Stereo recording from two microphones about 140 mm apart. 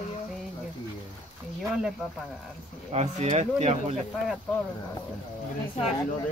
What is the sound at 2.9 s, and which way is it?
Speech, 50° right (ahead or behind).